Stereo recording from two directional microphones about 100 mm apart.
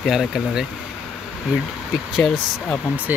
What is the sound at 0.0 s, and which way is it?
Speech, 5° right (ahead or behind).